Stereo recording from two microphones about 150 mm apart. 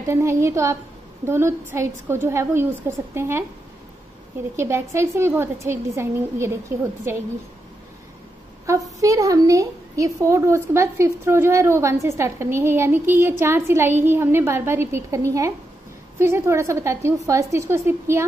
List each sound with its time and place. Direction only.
0.0 s a woman's voice: 20° right (ahead or behind)
4.6 s a woman's voice: 15° right (ahead or behind)
8.7 s a woman's voice: 20° right (ahead or behind)